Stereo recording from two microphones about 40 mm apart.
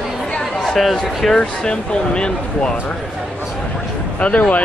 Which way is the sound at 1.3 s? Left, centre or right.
Left.